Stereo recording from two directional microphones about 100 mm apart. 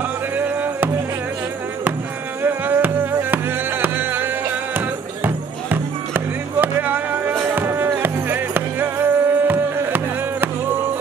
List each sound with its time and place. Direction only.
0.4 s music: 20° right (ahead or behind)
2.4 s music: 20° right (ahead or behind)